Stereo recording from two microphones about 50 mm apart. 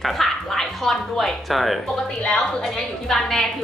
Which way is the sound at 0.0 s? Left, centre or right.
Centre.